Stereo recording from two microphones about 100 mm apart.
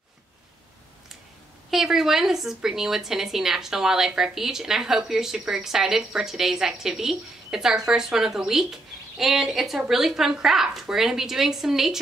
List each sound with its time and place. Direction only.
1.7 s a woman's voice: 5° right (ahead or behind)